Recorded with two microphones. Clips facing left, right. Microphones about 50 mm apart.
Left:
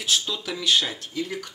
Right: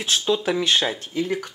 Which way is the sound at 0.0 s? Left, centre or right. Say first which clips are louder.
Right 5 dB; right.